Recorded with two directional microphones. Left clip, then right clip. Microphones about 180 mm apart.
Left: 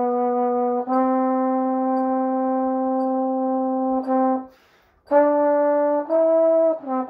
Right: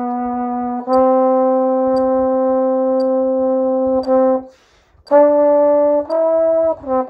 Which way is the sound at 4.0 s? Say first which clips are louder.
Right 7 dB; 40° right (ahead or behind).